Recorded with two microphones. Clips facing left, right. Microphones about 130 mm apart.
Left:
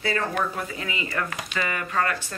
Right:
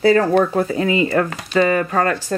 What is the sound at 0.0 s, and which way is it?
Speech, 35° right (ahead or behind).